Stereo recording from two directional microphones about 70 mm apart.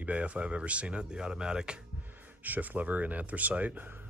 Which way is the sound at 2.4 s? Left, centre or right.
Right.